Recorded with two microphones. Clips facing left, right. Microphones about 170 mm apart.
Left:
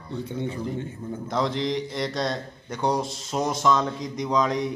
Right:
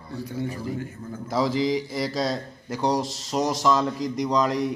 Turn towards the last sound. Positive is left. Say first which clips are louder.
# right 1 dB
turn(degrees=0)  # may be behind; listen again after turning